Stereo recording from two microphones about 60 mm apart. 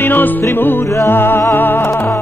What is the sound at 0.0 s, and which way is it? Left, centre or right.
Music, left.